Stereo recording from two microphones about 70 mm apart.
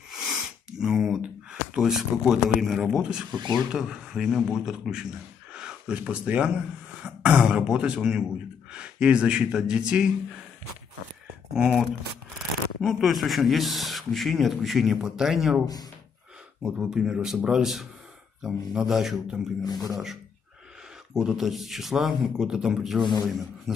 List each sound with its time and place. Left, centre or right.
0.1 s a sound: centre
1.2 s speech: centre
3.0 s a man's voice: centre
7.0 s throat clearing: centre
7.5 s speech: centre
11.5 s a man's voice: centre
15.6 s speech: left
16.6 s a man's voice: centre